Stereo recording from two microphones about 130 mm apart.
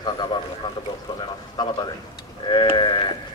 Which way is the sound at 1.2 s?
35° left (ahead or behind).